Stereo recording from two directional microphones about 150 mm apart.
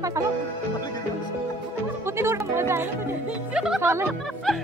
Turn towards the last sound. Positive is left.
turn(degrees=0)  # may be behind; listen again after turning